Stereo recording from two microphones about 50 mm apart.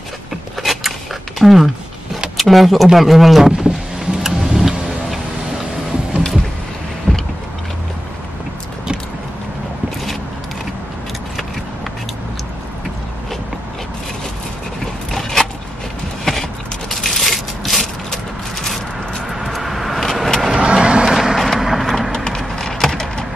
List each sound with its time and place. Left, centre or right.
0.6 s a sound: centre
1.4 s speech: centre
3.6 s vehicle: centre
4.2 s tick-tock: centre
7.1 s vehicle: centre
15.0 s a sound: centre
16.9 s crushing: centre
19.2 s vehicle: centre
20.5 s vehicle: centre
21.1 s vehicle: centre
22.1 s a sound: centre
22.4 s wood: centre